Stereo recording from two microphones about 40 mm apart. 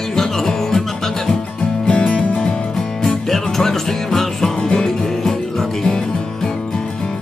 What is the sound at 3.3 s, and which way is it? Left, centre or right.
Music, centre.